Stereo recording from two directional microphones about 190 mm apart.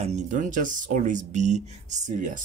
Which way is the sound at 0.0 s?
40° right (ahead or behind).